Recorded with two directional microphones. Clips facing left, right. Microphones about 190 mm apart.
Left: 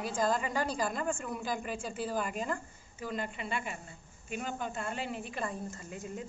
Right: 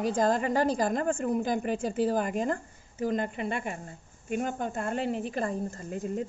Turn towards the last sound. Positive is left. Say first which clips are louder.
# right 8 dB
turn(degrees=-50)  # may be behind; listen again after turning